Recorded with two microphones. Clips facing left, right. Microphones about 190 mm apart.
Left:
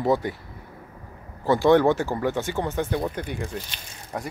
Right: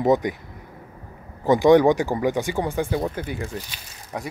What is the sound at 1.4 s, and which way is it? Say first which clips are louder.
Speech: right 3 dB; 15° right (ahead or behind).